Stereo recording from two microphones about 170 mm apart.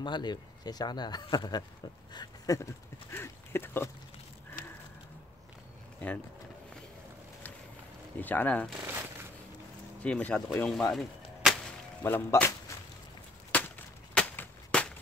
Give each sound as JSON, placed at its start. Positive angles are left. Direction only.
{"t": 0.0, "sound": "speech", "side_deg": 25}
{"t": 4.6, "sound": "a sound", "side_deg": 55}
{"t": 8.2, "sound": "speech", "side_deg": 10}
{"t": 8.7, "sound": "shuffling cards", "side_deg": -15}
{"t": 10.0, "sound": "gunshot", "side_deg": 5}
{"t": 12.0, "sound": "speech", "side_deg": 15}
{"t": 13.5, "sound": "a sound", "side_deg": 10}